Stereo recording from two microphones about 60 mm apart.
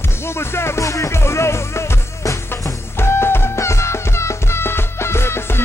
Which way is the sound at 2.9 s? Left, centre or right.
Left.